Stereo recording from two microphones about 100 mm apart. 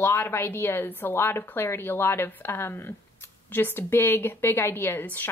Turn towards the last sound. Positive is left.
turn(degrees=20)  # may be behind; listen again after turning